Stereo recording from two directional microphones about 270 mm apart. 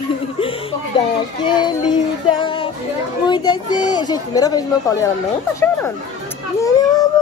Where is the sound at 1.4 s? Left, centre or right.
Centre.